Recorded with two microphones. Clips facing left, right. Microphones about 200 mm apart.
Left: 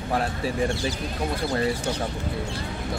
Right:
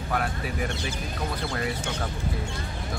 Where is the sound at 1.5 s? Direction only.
35° left (ahead or behind).